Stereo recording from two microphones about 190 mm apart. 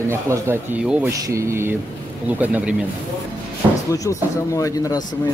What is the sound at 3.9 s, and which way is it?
Speech, 15° left (ahead or behind).